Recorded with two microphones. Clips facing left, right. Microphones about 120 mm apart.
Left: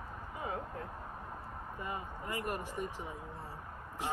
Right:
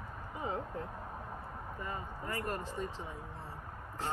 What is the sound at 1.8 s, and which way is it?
Speech, 15° left (ahead or behind).